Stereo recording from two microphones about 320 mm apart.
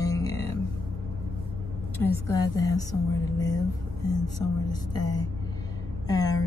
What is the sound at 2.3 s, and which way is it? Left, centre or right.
A woman's voice, centre.